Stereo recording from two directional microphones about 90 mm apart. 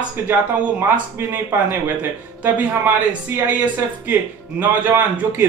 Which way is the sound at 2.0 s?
20° right (ahead or behind).